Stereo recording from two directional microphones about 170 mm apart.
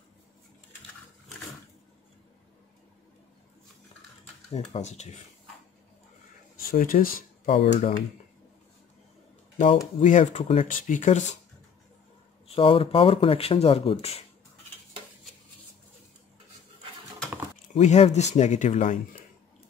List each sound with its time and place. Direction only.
4.5 s speech: 40° left (ahead or behind)
6.6 s speech: 60° left (ahead or behind)
7.4 s speech: 35° left (ahead or behind)
10.0 s speech: 45° left (ahead or behind)
12.4 s speech: 30° left (ahead or behind)
17.7 s speech: 40° left (ahead or behind)